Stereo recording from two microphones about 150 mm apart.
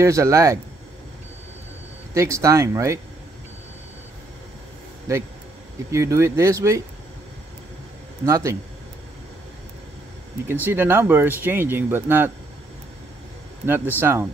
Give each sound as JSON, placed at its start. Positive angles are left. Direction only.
{"t": 0.0, "sound": "speech", "side_deg": -20}
{"t": 2.1, "sound": "speech", "side_deg": -20}
{"t": 5.1, "sound": "speech", "side_deg": -20}
{"t": 8.3, "sound": "speech", "side_deg": -20}
{"t": 10.5, "sound": "speech", "side_deg": -15}
{"t": 13.9, "sound": "speech", "side_deg": -15}